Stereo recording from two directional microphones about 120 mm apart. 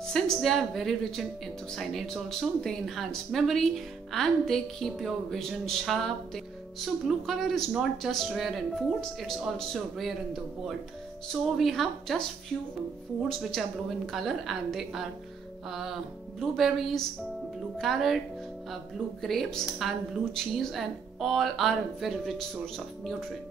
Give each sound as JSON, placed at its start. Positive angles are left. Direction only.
{"t": 0.0, "sound": "a woman's voice", "side_deg": 0}
{"t": 11.4, "sound": "speech", "side_deg": 0}
{"t": 19.2, "sound": "speech", "side_deg": 0}